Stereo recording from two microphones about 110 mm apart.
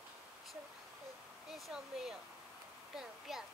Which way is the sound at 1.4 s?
5° right (ahead or behind).